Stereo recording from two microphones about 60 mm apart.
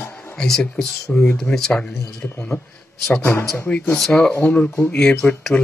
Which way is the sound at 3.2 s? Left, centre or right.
Left.